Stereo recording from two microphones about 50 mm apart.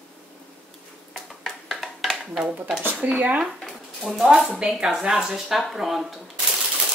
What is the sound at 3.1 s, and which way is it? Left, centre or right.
Speech, right.